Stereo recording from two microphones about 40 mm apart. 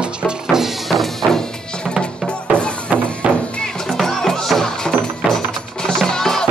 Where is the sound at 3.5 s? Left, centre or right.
Centre.